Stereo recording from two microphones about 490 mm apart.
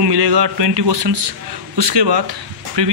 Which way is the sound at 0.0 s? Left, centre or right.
Right.